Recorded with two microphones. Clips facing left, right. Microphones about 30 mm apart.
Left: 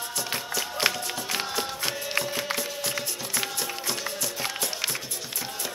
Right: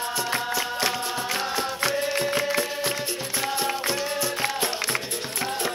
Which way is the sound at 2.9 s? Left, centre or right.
Right.